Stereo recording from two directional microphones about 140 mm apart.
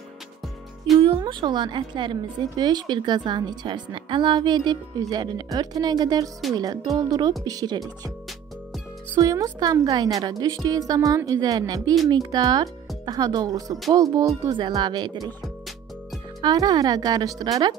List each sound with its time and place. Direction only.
1.0 s a woman's voice: 35° right (ahead or behind)
9.2 s a woman's voice: 25° right (ahead or behind)
15.4 s music: centre (ahead or behind)
16.3 s a woman's voice: 30° right (ahead or behind)